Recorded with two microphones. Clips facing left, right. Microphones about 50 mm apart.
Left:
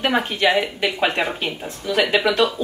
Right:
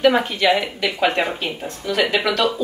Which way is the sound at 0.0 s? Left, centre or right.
Centre.